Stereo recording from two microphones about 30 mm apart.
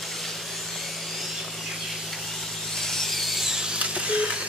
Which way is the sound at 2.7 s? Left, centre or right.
Centre.